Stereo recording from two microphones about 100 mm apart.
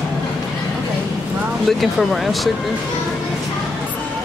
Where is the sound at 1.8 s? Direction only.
Centre (ahead or behind).